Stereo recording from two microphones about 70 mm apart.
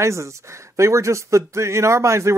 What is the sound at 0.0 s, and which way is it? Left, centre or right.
Speech, right.